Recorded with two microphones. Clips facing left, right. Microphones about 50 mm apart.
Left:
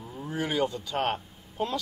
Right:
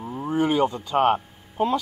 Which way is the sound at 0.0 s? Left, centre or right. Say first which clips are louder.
Right 8 dB; right.